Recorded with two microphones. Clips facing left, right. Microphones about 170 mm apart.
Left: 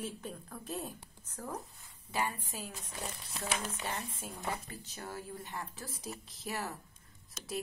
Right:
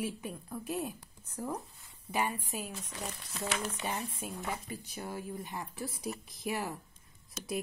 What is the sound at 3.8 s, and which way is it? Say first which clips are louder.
Speech: right 3 dB; 10° right (ahead or behind).